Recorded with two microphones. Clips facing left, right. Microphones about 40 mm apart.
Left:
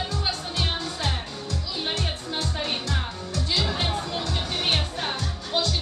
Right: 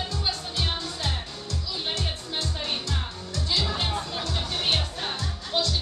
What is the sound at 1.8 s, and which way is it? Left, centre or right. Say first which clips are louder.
Music: left 2 dB; centre.